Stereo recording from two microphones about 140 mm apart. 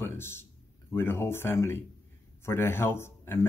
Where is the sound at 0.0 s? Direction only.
15° left (ahead or behind).